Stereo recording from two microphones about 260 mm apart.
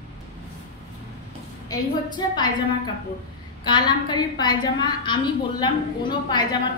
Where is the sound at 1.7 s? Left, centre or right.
Centre.